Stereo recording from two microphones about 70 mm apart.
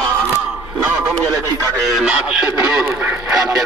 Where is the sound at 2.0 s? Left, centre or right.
Centre.